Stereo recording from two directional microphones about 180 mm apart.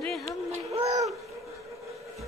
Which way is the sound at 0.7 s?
35° right (ahead or behind).